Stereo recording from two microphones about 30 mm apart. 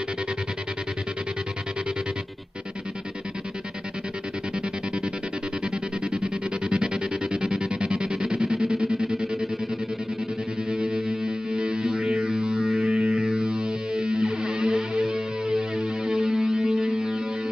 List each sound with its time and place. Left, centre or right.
6.0 s music: right
10.7 s music: right